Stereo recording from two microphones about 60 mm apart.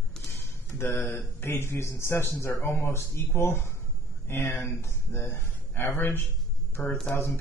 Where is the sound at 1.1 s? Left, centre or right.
Left.